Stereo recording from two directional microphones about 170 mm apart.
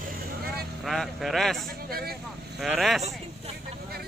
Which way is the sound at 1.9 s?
65° right (ahead or behind).